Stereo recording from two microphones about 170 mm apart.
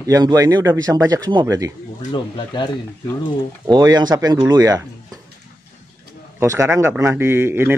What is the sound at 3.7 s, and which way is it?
Speech, 25° right (ahead or behind).